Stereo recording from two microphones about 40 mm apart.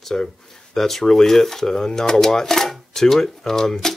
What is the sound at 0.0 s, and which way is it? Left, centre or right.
Speech, centre.